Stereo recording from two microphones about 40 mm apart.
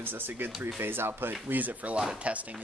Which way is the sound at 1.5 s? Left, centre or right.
Right.